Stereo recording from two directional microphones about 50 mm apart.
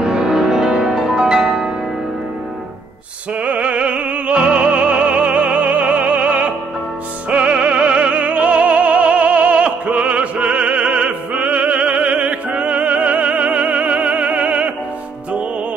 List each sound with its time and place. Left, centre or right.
0.0 s music: centre
3.4 s music: right